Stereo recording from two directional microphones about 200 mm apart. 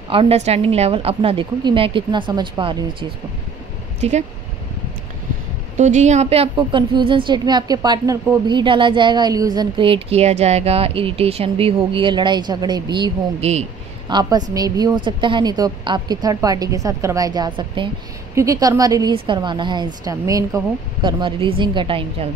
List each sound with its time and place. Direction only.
0.1 s a woman's voice: 30° right (ahead or behind)
4.0 s speech: 35° right (ahead or behind)
5.8 s a woman's voice: 35° right (ahead or behind)
14.0 s a woman's voice: 20° right (ahead or behind)